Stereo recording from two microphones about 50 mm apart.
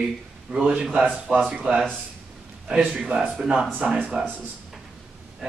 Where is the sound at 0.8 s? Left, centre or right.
Centre.